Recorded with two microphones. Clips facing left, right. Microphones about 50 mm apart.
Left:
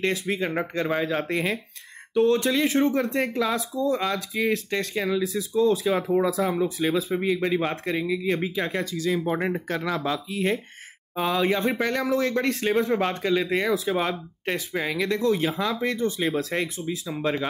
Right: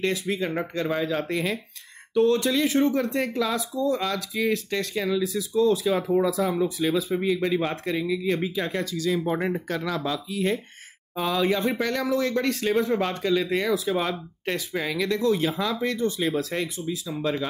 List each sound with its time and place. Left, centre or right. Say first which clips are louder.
0.0 s speech: even; left
16.5 s speech: left 1 dB; left